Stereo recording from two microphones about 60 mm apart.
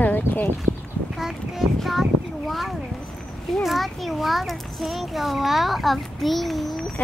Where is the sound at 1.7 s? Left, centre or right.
Centre.